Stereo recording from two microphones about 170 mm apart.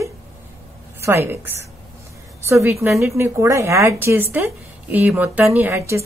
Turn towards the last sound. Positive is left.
turn(degrees=-15)  # may be behind; listen again after turning